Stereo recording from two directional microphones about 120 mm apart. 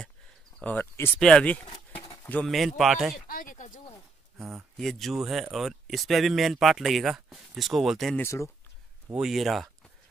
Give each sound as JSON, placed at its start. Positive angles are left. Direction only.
{"t": 0.6, "sound": "speech", "side_deg": 15}
{"t": 3.4, "sound": "a sound", "side_deg": 90}
{"t": 4.4, "sound": "speech", "side_deg": 0}
{"t": 8.2, "sound": "speech", "side_deg": 25}
{"t": 9.1, "sound": "speech", "side_deg": -5}